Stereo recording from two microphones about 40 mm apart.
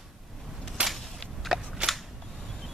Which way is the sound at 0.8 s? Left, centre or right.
Right.